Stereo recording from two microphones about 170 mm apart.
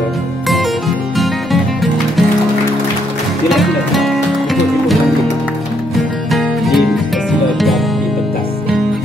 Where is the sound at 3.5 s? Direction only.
Centre (ahead or behind).